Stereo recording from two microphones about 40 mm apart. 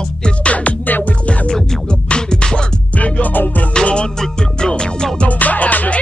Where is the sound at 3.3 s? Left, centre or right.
Left.